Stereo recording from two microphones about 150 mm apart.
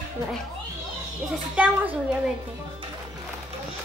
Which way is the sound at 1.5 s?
10° right (ahead or behind).